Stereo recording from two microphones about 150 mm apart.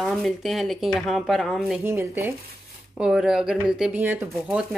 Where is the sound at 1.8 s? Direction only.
15° right (ahead or behind).